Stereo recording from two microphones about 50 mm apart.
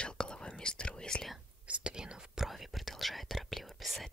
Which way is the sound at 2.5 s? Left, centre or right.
Centre.